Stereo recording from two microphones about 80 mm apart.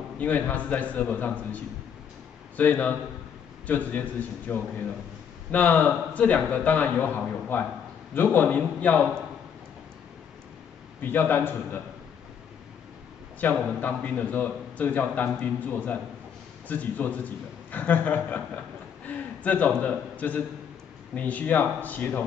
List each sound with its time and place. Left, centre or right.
0.2 s a man's voice: left
11.0 s a man's voice: left
13.4 s a man's voice: left